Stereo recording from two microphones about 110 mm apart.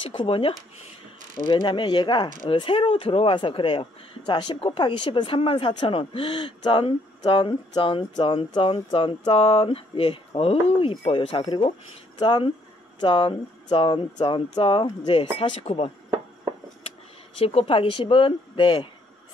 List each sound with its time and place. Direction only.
0.1 s speech: 50° left (ahead or behind)
17.4 s speech: 60° left (ahead or behind)